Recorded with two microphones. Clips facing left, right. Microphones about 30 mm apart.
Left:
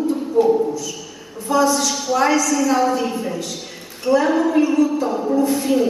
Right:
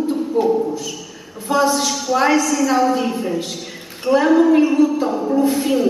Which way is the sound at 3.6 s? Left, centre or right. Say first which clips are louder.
Right 2 dB; centre.